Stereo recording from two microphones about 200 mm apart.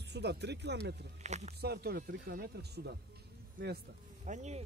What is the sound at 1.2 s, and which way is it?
Speech, 35° right (ahead or behind).